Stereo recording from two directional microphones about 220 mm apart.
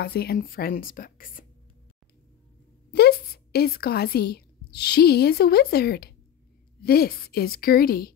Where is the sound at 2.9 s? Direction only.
45° left (ahead or behind).